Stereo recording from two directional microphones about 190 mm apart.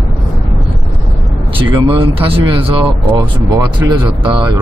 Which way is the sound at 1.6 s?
25° right (ahead or behind).